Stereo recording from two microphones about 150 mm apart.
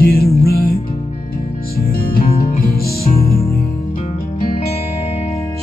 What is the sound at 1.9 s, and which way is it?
Music, 85° left.